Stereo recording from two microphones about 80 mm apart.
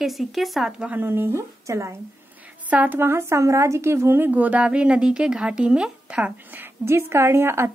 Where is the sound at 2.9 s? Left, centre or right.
Right; by 6.3 s centre.